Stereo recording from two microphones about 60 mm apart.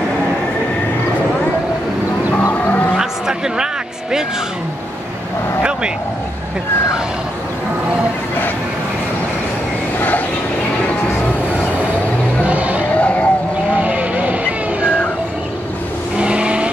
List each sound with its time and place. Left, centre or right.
2.6 s a sound: left
3.0 s a sound: centre
9.9 s vehicle: left
12.4 s music: right
12.9 s vehicle: left
13.7 s vehicle: right
16.2 s vehicle: centre